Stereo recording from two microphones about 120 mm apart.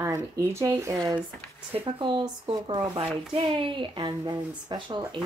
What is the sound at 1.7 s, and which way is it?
Speech, 45° right (ahead or behind).